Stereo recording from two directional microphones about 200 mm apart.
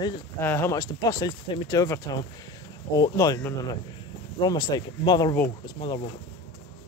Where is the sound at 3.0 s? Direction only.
15° left (ahead or behind).